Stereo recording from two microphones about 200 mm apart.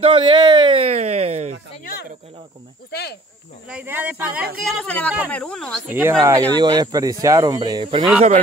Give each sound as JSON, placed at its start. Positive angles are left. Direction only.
{"t": 0.0, "sound": "a sound", "side_deg": -25}
{"t": 2.9, "sound": "speech", "side_deg": 55}
{"t": 3.6, "sound": "speech", "side_deg": -10}
{"t": 4.6, "sound": "speech", "side_deg": 5}
{"t": 5.9, "sound": "speech", "side_deg": -10}